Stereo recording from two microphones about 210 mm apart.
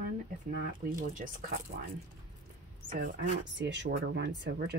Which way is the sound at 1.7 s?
40° right (ahead or behind).